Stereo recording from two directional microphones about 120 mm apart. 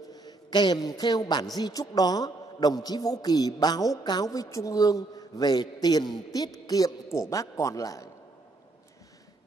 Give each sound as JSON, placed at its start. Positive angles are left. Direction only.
{"t": 0.1, "sound": "a man's voice", "side_deg": 35}